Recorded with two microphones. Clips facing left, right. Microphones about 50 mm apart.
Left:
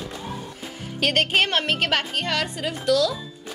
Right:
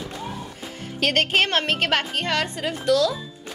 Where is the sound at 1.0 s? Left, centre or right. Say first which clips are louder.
Even; centre.